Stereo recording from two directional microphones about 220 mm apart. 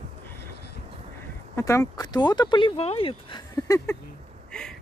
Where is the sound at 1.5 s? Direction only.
10° left (ahead or behind).